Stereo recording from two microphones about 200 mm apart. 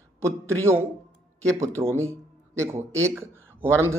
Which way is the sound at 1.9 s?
15° right (ahead or behind).